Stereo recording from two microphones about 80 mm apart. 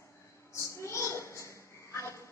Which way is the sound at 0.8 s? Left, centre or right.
Left.